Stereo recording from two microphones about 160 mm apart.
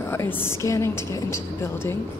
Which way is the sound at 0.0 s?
15° left (ahead or behind).